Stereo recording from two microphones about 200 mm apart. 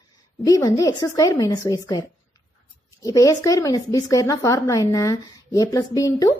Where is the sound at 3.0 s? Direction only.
15° left (ahead or behind).